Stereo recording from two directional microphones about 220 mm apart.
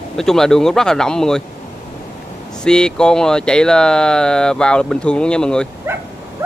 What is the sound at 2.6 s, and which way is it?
Speech, 5° left (ahead or behind).